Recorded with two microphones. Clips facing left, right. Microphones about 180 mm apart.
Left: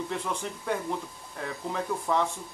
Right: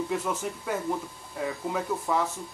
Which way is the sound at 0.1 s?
5° right (ahead or behind).